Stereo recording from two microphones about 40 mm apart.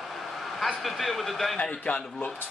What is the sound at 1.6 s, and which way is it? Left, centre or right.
Speech, left.